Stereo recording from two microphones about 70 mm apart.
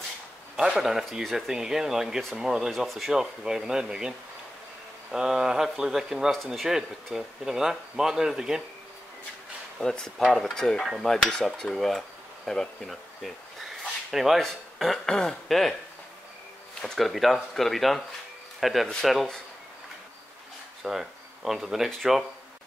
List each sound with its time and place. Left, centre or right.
0.6 s speech: centre
5.1 s speech: centre
9.8 s speech: centre
16.8 s speech: centre
20.8 s speech: centre